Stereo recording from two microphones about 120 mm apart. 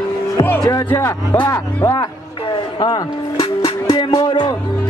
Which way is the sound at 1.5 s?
25° left (ahead or behind).